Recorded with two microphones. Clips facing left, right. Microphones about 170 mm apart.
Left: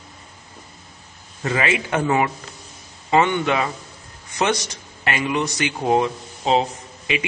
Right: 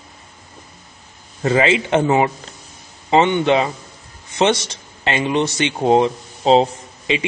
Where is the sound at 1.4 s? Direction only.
25° right (ahead or behind).